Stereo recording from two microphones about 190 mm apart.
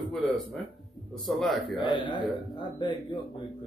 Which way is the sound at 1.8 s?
25° left (ahead or behind).